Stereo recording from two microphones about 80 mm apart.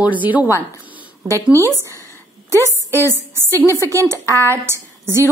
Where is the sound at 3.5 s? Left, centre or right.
Left.